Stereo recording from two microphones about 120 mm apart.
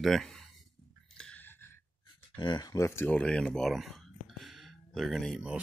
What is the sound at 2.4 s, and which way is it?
Speech, 40° left (ahead or behind).